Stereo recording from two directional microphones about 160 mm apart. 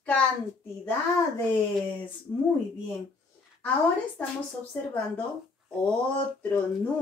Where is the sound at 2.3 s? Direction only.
30° left (ahead or behind).